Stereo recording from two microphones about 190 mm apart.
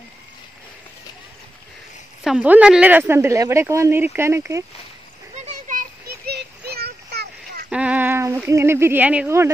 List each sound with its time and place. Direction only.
2.2 s speech: 5° right (ahead or behind)
5.3 s a sound: 40° right (ahead or behind); by 7.6 s 55° right (ahead or behind)
7.7 s speech: 5° right (ahead or behind)